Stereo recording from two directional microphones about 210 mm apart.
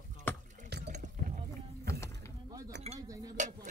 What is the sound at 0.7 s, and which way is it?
Water, 55° right (ahead or behind).